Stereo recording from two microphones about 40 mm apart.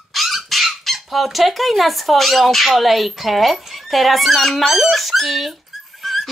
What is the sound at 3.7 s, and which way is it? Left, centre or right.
Speech, centre.